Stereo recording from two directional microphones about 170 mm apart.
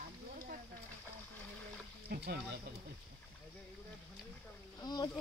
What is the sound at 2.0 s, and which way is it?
Speech, 70° right (ahead or behind).